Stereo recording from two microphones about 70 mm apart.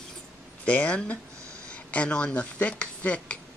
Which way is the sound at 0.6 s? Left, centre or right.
Centre.